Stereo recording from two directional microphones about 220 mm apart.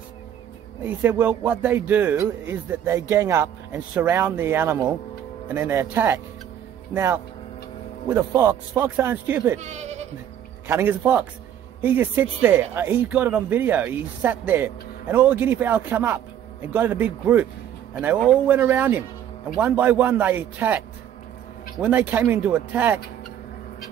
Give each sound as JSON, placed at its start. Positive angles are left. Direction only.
{"t": 0.8, "sound": "speech", "side_deg": -5}
{"t": 9.6, "sound": "speech", "side_deg": -30}
{"t": 10.7, "sound": "speech", "side_deg": -10}